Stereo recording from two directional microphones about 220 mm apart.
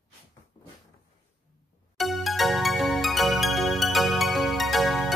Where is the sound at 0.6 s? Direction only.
20° left (ahead or behind).